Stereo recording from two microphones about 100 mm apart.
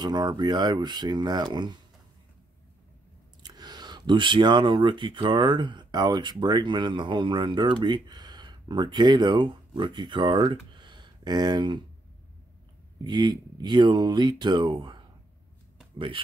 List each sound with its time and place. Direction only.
0.0 s speech: 45° right (ahead or behind)
3.4 s speech: 45° right (ahead or behind)
13.0 s speech: 45° right (ahead or behind)